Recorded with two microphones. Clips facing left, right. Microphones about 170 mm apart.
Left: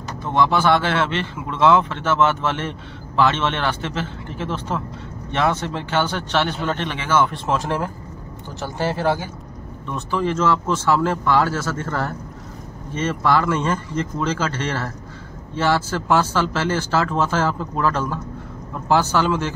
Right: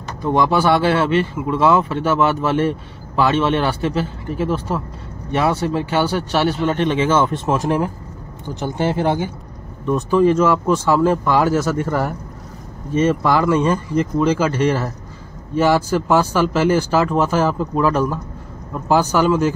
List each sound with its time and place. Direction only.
0.2 s speech: 10° right (ahead or behind)